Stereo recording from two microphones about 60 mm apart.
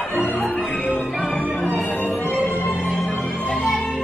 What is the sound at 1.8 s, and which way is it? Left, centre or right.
Music, left.